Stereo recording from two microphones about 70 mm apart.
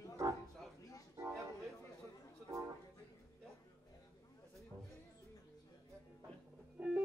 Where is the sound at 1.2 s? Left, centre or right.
Right.